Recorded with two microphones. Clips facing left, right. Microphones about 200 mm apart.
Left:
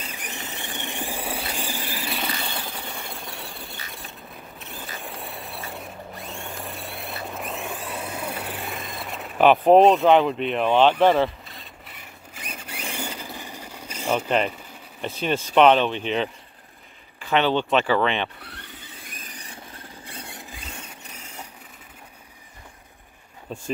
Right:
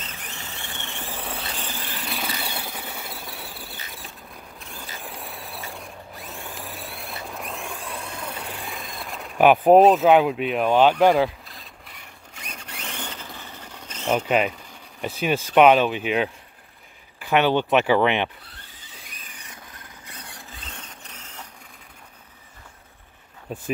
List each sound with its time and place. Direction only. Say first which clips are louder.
0.0 s a sound: left 3 dB; 15° left (ahead or behind)
15.0 s speech: right 1 dB; 5° right (ahead or behind)
18.4 s squeal: left 7 dB; 65° left (ahead or behind)
19.3 s vehicle: left 2 dB; 35° left (ahead or behind)
20.1 s a sound: left 3 dB; 25° left (ahead or behind)
20.5 s vehicle: left 2 dB; 10° left (ahead or behind)
23.5 s speech: right 1 dB; 10° right (ahead or behind)